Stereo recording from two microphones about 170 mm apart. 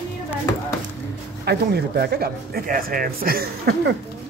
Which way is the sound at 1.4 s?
70° right (ahead or behind).